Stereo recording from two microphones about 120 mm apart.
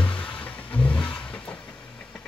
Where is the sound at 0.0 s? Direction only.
10° left (ahead or behind).